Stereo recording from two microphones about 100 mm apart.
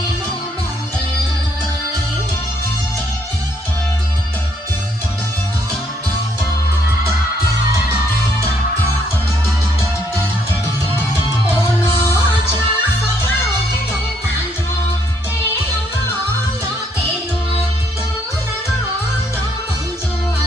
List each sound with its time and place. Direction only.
11.0 s music: 25° left (ahead or behind)